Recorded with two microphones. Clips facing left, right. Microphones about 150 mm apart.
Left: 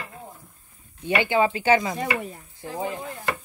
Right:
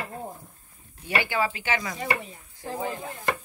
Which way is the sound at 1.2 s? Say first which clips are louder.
Left 5 dB; 25° left (ahead or behind).